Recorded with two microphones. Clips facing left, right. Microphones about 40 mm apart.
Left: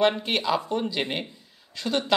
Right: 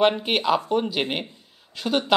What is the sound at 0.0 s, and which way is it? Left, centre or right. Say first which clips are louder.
Speech: right 3 dB; centre.